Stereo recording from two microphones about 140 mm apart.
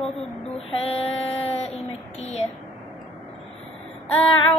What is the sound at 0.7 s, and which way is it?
Female singing, 45° left (ahead or behind).